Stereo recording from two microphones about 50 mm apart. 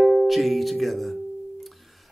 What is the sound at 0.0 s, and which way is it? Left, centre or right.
Music, centre.